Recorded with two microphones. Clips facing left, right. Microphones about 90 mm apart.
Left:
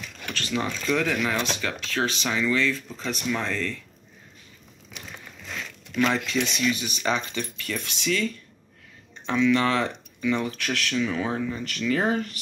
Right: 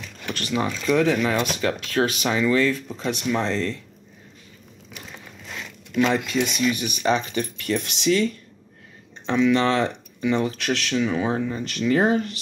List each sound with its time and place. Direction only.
0.4 s speech: 20° right (ahead or behind)
1.3 s speech: 10° right (ahead or behind)
1.6 s speech: 40° right (ahead or behind)
2.9 s speech: 20° right (ahead or behind)
5.5 s a sound: 20° right (ahead or behind)
6.4 s speech: 15° right (ahead or behind)
6.7 s speech: 55° right (ahead or behind)
9.2 s speech: 25° right (ahead or behind)